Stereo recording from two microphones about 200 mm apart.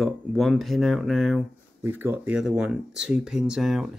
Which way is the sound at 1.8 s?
10° right (ahead or behind).